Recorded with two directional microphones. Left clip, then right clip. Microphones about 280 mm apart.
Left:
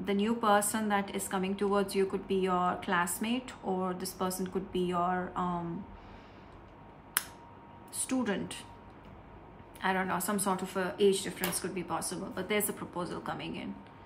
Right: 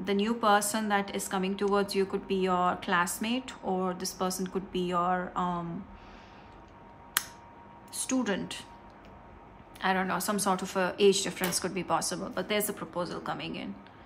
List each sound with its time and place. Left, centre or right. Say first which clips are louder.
0.0 s a woman's voice: right 3 dB; centre
8.1 s a woman's voice: right 2 dB; centre
9.8 s a woman's voice: right 2 dB; centre